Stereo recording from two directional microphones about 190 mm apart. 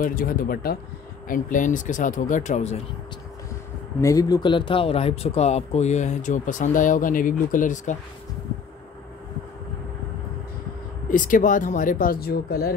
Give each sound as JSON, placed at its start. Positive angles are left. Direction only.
{"t": 0.0, "sound": "speech", "side_deg": 50}
{"t": 4.0, "sound": "speech", "side_deg": 20}
{"t": 11.1, "sound": "speech", "side_deg": 45}